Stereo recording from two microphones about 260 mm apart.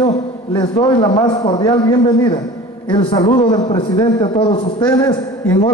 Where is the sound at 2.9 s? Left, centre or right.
Centre.